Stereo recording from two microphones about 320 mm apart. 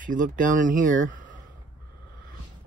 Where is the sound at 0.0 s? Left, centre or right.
Right.